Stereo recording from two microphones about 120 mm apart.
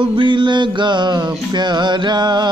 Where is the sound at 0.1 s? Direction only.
40° right (ahead or behind).